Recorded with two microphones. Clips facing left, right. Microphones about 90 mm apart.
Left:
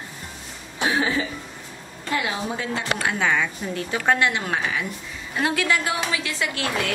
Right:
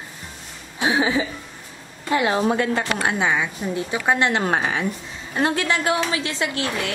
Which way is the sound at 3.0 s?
20° right (ahead or behind).